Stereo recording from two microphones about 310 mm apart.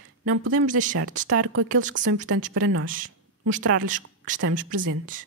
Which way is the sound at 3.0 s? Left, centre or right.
Right.